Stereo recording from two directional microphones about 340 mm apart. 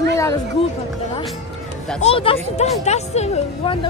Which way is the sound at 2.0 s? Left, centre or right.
Centre.